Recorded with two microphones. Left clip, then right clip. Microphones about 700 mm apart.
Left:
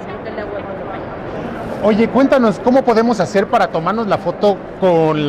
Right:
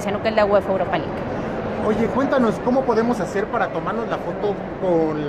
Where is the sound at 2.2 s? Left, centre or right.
Left.